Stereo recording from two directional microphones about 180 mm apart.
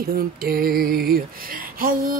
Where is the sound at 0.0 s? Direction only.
55° right (ahead or behind).